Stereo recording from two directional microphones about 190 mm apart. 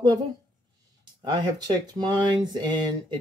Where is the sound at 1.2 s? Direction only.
20° right (ahead or behind).